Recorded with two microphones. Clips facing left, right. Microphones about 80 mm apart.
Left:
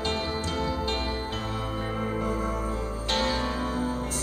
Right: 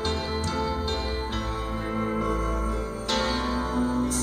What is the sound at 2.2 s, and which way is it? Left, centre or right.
Music, right.